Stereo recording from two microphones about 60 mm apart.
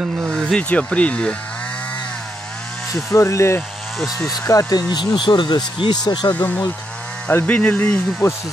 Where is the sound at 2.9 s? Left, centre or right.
Left.